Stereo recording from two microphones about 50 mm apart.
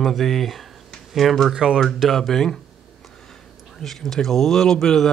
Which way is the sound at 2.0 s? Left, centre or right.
Centre.